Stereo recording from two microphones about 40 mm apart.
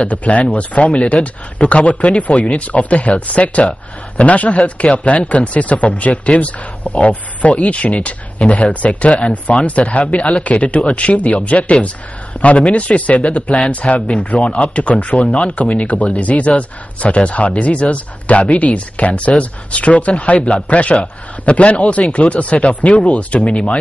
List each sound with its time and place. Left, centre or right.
0.0 s speech: left
9.7 s speech: left